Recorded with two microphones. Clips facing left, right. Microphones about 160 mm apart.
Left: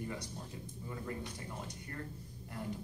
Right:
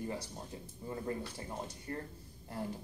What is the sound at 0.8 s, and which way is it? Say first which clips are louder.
Speech: right 4 dB; 30° right (ahead or behind).